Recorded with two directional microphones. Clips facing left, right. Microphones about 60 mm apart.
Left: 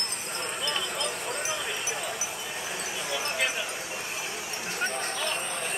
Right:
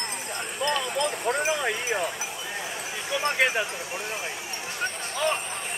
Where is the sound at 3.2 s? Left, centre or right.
Right.